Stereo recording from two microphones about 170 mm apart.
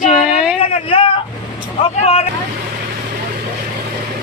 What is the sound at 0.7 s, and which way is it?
Speech, 30° left (ahead or behind).